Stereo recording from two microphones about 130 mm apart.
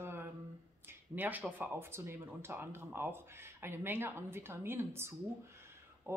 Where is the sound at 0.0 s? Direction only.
15° right (ahead or behind).